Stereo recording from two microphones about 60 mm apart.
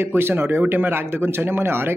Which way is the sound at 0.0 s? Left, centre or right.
Right.